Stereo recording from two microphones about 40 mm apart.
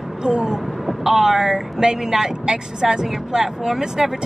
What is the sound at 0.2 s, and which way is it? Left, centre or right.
Speech, centre.